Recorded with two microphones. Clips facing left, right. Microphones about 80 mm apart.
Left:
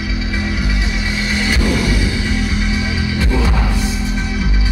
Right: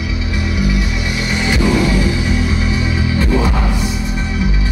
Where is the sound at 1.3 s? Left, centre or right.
Right.